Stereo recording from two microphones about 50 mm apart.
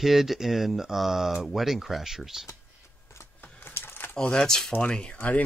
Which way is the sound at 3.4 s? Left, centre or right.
Left.